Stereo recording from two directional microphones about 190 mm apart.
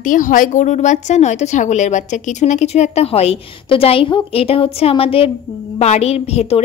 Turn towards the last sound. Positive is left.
turn(degrees=35)  # may be behind; listen again after turning